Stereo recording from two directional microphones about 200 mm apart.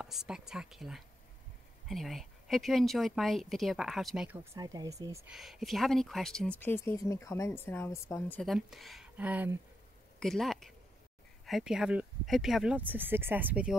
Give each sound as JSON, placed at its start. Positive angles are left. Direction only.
{"t": 0.0, "sound": "speech", "side_deg": 0}
{"t": 4.6, "sound": "speech", "side_deg": -15}
{"t": 5.3, "sound": "speech", "side_deg": 0}
{"t": 8.4, "sound": "speech", "side_deg": 0}